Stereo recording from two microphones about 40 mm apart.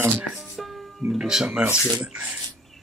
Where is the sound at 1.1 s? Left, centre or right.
Centre.